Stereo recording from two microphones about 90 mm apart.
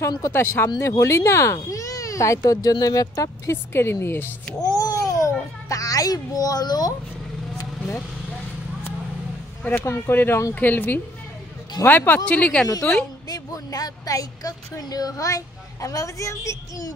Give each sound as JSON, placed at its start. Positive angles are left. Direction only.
{"t": 0.2, "sound": "speech", "side_deg": 25}
{"t": 3.7, "sound": "speech", "side_deg": 25}
{"t": 4.6, "sound": "babbling", "side_deg": 45}
{"t": 5.7, "sound": "a child's voice", "side_deg": 40}
{"t": 9.7, "sound": "speech", "side_deg": 25}
{"t": 13.3, "sound": "speech", "side_deg": 40}